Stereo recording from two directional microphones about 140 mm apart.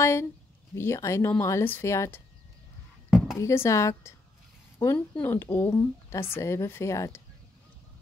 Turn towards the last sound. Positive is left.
turn(degrees=20)  # may be behind; listen again after turning